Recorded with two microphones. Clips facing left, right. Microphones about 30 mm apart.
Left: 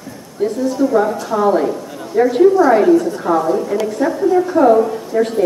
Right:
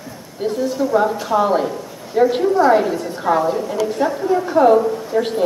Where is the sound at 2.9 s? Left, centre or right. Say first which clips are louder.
Left 4 dB; right.